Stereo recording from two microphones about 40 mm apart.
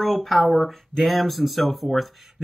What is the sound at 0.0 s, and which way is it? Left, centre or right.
Speech, centre.